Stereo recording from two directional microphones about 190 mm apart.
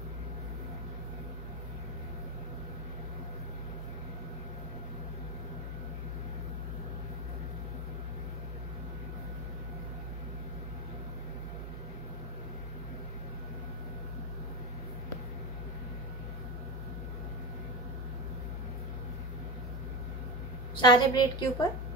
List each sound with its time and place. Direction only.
20.8 s a woman's voice: 25° left (ahead or behind)